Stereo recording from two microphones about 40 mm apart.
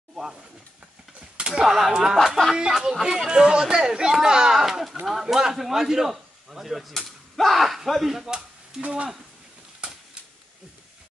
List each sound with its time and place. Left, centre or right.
0.1 s a sound: centre
1.5 s speech: centre
2.5 s speech: centre
8.1 s speech: centre
8.8 s speech: right